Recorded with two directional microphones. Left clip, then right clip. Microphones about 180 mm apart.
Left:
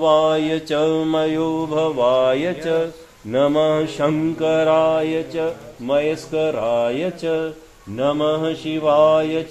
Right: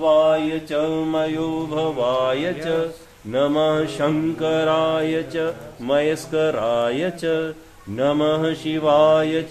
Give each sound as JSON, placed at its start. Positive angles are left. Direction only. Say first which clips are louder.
{"t": 0.0, "sound": "mantra", "louder": "even", "side_deg": 65}
{"t": 1.7, "sound": "mantra", "louder": "left 4 dB", "side_deg": 35}